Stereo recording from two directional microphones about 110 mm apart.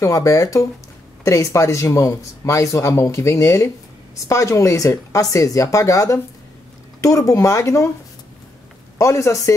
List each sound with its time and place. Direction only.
0.0 s speech: 30° left (ahead or behind)
8.9 s speech: 25° left (ahead or behind)